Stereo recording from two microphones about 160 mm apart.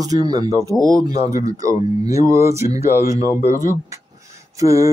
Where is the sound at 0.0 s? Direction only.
25° right (ahead or behind).